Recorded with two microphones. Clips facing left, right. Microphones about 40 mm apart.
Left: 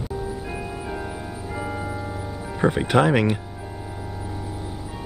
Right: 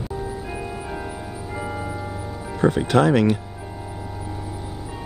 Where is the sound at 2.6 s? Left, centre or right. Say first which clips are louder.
Right 1 dB; centre.